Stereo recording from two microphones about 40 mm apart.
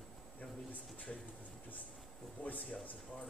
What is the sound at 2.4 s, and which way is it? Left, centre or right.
Speech, left.